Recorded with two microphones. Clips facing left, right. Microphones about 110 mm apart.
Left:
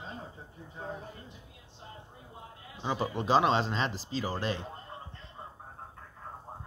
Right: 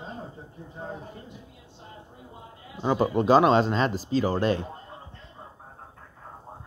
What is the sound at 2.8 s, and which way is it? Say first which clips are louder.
Speech: right 9 dB; 45° right (ahead or behind).